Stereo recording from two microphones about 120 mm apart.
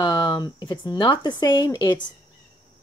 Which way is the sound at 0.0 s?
40° left (ahead or behind).